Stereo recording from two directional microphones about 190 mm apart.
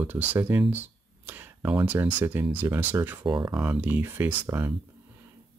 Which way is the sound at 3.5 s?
10° right (ahead or behind).